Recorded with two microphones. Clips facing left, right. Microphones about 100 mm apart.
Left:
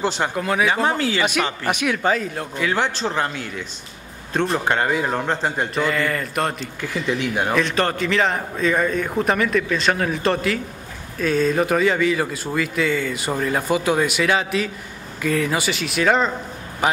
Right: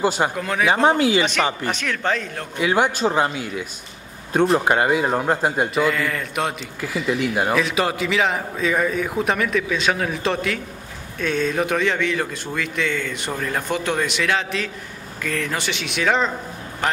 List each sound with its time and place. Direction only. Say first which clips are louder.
0.0 s speech: right 2 dB; 10° right (ahead or behind)
0.4 s a man's voice: left 2 dB; 5° left (ahead or behind)
0.8 s speech: right 4 dB; 15° right (ahead or behind)
1.7 s a man's voice: left 3 dB; 10° left (ahead or behind)
2.6 s a man's voice: right 4 dB; 10° right (ahead or behind); by 17.0 s 10° left (ahead or behind)